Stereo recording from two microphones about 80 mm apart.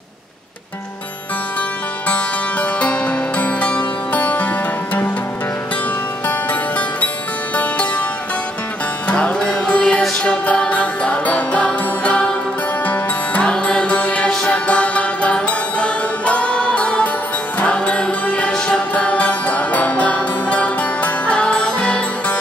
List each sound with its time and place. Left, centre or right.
2.0 s music: centre
7.5 s music: centre
9.0 s music: centre